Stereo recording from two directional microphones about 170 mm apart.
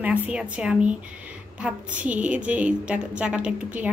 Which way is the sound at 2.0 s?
10° right (ahead or behind).